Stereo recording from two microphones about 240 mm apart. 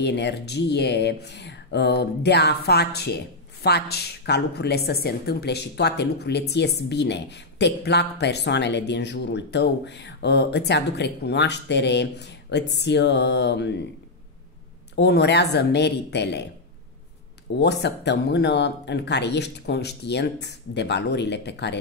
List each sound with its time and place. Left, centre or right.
0.0 s a woman's voice: left
15.0 s a woman's voice: left
17.6 s a woman's voice: left